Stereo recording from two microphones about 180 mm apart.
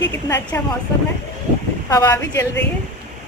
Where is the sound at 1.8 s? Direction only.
15° left (ahead or behind).